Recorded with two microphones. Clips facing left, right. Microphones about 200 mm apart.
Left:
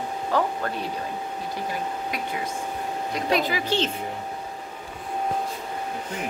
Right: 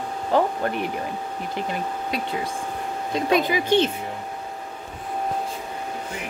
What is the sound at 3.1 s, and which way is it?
Speech, 20° right (ahead or behind).